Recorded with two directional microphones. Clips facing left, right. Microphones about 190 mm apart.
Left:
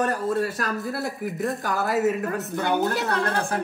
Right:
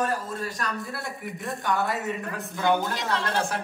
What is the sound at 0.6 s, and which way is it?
Speech, centre (ahead or behind).